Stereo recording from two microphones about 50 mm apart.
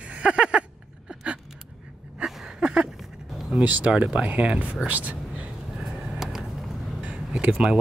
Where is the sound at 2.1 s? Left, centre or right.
Centre.